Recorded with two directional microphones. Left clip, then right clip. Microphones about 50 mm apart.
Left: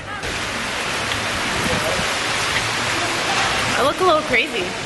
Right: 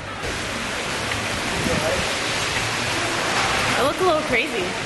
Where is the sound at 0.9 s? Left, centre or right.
Centre.